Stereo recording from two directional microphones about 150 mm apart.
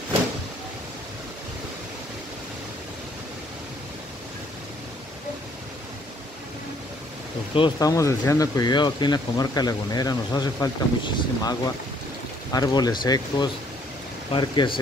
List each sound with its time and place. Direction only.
7.8 s speech: 20° left (ahead or behind)